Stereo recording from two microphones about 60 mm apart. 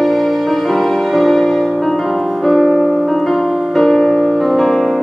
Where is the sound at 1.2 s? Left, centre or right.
Centre.